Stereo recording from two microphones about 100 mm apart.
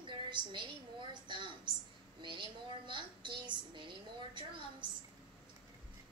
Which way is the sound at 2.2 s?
55° right (ahead or behind).